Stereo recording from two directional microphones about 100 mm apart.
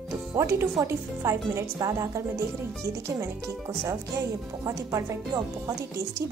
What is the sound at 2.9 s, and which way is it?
Speech, 30° right (ahead or behind).